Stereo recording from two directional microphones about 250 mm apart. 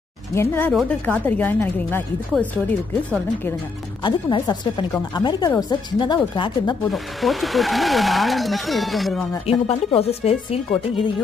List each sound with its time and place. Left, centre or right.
0.3 s speech: centre
4.0 s speech: centre
6.9 s speech: centre
9.5 s speech: left